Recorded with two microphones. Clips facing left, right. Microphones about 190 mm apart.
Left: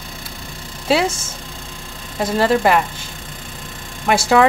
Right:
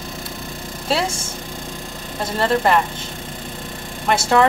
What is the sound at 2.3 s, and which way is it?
Speech, 10° left (ahead or behind).